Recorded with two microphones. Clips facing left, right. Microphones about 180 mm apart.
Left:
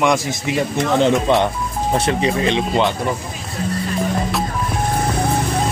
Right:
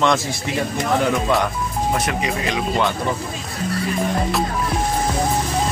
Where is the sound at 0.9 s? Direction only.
25° left (ahead or behind).